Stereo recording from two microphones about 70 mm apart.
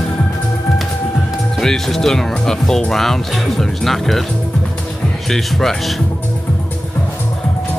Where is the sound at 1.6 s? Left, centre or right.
Centre.